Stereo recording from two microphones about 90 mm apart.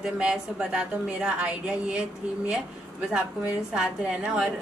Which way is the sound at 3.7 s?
10° right (ahead or behind).